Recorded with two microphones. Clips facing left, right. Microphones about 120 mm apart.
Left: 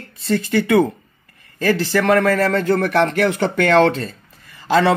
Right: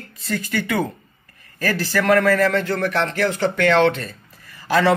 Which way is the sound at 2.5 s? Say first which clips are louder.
Left 4 dB; 45° left (ahead or behind).